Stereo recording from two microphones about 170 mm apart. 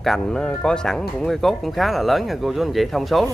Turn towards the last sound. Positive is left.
turn(degrees=0)  # may be behind; listen again after turning